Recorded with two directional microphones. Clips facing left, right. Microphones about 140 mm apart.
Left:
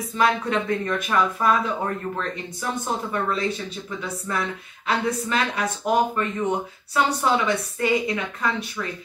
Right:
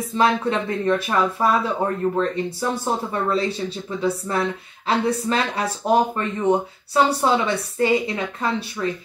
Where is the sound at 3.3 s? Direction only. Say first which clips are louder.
Right 3 dB; 30° right (ahead or behind).